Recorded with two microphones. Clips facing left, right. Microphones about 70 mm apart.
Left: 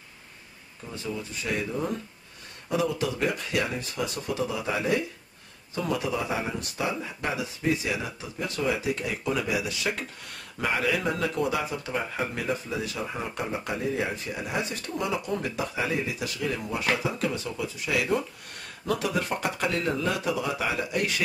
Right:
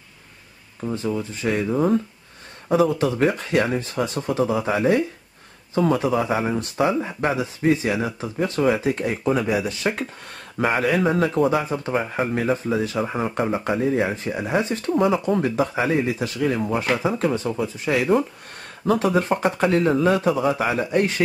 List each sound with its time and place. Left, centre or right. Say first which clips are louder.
0.8 s speech: right 9 dB; right